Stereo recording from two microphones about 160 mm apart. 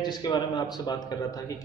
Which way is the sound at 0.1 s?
25° left (ahead or behind).